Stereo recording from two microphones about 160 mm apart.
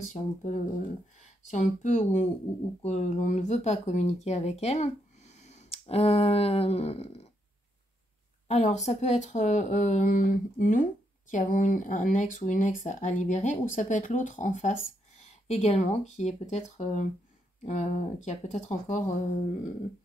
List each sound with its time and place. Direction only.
0.1 s speech: 50° left (ahead or behind)
8.5 s speech: 45° left (ahead or behind)